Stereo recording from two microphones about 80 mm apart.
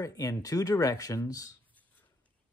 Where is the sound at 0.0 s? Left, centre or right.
Left.